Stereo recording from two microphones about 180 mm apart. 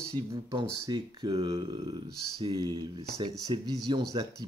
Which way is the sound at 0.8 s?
20° right (ahead or behind).